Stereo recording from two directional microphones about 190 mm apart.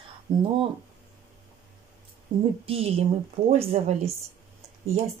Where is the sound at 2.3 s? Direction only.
25° right (ahead or behind).